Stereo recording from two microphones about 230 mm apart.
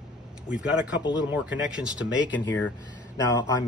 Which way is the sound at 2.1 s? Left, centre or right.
Left.